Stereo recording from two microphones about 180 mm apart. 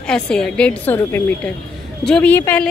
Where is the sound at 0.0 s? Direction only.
5° left (ahead or behind).